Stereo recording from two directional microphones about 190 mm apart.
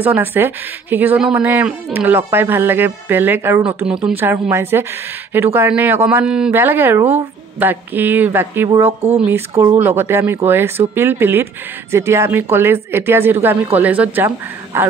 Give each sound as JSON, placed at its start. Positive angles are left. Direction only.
{"t": 0.0, "sound": "speech", "side_deg": -10}